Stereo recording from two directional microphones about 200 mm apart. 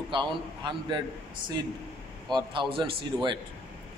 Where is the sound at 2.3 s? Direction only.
20° right (ahead or behind).